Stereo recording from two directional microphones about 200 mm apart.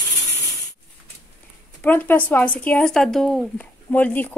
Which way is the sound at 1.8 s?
10° left (ahead or behind).